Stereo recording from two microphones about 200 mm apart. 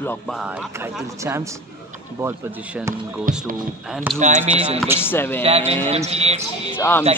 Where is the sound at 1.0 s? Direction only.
15° right (ahead or behind).